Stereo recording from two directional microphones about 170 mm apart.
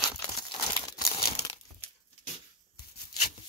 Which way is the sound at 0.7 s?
20° left (ahead or behind).